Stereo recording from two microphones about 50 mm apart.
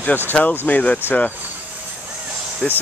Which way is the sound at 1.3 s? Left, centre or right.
Right.